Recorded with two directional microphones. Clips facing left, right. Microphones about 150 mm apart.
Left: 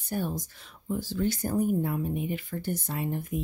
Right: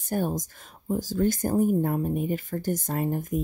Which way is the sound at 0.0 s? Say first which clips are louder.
Right 4 dB; 45° right (ahead or behind).